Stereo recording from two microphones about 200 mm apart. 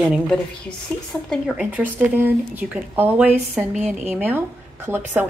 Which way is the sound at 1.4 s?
5° right (ahead or behind).